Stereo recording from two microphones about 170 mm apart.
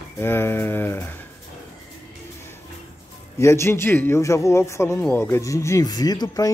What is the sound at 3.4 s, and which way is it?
Speech, 15° left (ahead or behind).